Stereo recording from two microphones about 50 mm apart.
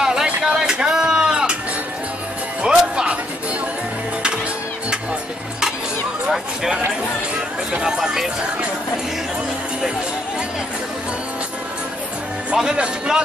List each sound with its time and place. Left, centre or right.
0.0 s a sound: centre
2.6 s music: centre
6.2 s speech: centre
12.7 s speech: centre